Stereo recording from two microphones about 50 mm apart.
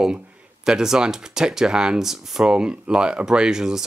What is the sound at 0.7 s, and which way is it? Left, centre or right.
Speech, centre.